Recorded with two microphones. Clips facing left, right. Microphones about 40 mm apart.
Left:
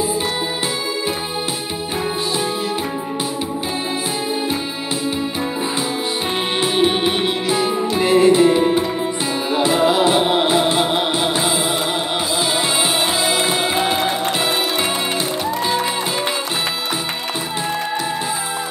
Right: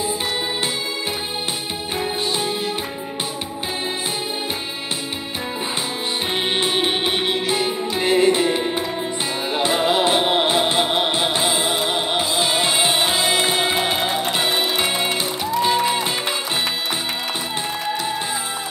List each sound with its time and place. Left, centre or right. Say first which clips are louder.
6.6 s music: left 7 dB; centre